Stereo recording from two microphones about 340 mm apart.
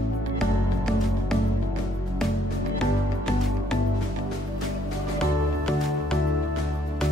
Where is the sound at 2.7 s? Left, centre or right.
Centre.